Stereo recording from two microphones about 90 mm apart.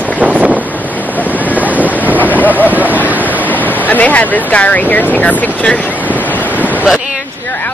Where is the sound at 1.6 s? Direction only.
15° right (ahead or behind).